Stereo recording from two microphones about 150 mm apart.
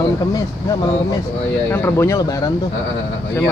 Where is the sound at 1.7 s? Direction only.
15° left (ahead or behind).